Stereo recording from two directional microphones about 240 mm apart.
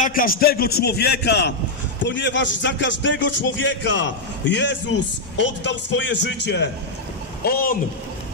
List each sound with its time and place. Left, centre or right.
0.0 s a man's voice: left